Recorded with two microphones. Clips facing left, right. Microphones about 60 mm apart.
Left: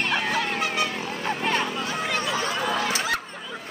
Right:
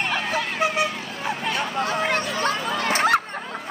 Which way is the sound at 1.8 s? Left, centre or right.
Right.